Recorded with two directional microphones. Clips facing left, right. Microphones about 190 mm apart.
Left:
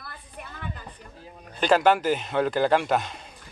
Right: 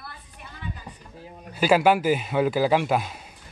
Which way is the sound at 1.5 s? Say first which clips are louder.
Right 1 dB; 10° right (ahead or behind).